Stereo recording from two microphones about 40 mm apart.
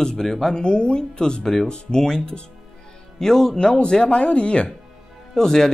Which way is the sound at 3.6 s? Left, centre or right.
Left.